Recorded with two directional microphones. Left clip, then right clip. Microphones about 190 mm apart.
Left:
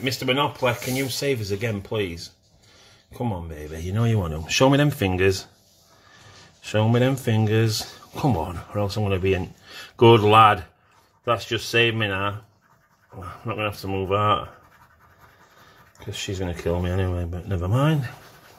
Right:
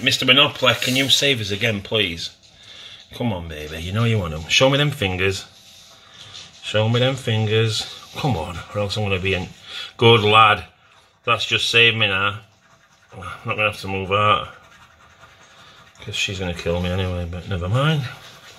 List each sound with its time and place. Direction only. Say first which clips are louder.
0.0 s speech: right 8 dB; 40° left (ahead or behind)
3.1 s speech: right 3 dB; 40° left (ahead or behind)
6.6 s speech: right 2 dB; 55° left (ahead or behind)
16.1 s speech: right 6 dB; 50° left (ahead or behind)